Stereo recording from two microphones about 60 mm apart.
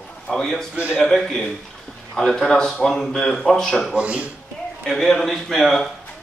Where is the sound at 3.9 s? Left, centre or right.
Right.